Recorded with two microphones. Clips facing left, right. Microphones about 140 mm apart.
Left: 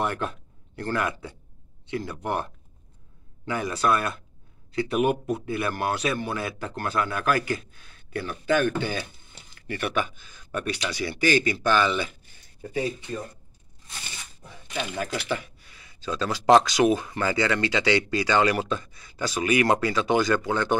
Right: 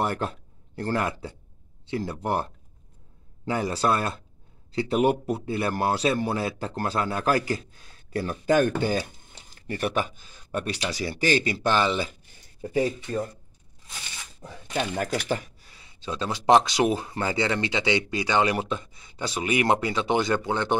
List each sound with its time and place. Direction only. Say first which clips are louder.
0.0 s a man's voice: right 1 dB; 35° right (ahead or behind)
14.4 s speech: right 4 dB; 40° right (ahead or behind); by 20.7 s 25° right (ahead or behind)